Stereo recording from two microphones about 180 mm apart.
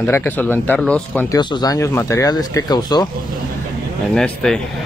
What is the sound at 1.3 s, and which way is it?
Speech, 20° left (ahead or behind).